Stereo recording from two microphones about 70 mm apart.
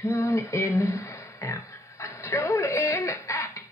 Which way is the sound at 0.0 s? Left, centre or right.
Left.